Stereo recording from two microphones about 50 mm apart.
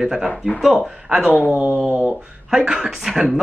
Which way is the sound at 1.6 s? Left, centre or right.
Right.